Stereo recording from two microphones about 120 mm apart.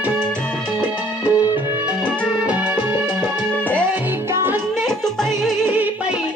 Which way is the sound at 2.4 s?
10° right (ahead or behind).